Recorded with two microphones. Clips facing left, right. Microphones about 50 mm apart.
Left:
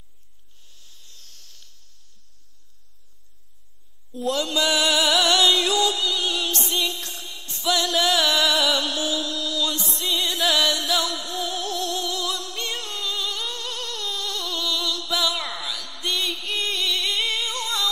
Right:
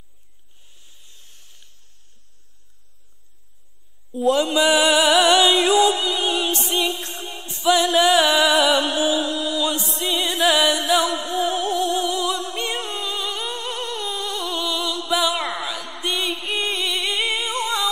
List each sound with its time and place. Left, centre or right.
0.7 s a sound: right
4.1 s music: centre
7.0 s music: right
16.0 s singing: centre